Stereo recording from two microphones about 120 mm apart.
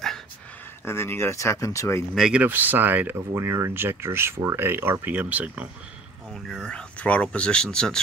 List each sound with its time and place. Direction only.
0.8 s speech: 20° left (ahead or behind)
2.1 s speech: 5° right (ahead or behind)
6.3 s speech: 5° left (ahead or behind)